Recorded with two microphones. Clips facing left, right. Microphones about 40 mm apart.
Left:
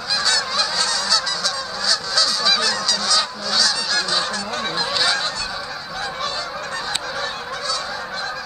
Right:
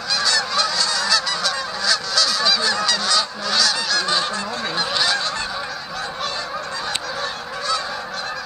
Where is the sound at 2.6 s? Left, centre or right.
Centre.